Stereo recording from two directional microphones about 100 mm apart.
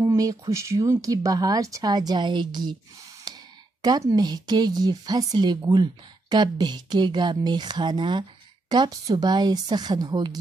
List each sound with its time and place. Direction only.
0.0 s speech: 30° right (ahead or behind); by 2.7 s 50° right (ahead or behind)
3.3 s a sound: 40° right (ahead or behind)
3.8 s speech: 40° right (ahead or behind)